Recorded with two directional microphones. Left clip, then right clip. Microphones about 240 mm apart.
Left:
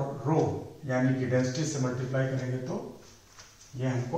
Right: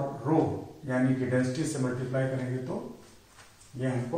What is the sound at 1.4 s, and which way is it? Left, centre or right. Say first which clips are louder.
A man's voice: even; centre.